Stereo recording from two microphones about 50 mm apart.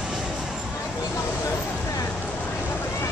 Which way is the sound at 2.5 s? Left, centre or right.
Left.